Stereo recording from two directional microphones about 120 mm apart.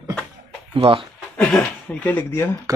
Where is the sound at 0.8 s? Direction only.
50° right (ahead or behind).